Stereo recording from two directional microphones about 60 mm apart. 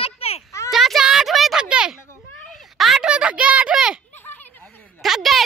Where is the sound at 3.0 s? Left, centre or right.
Centre.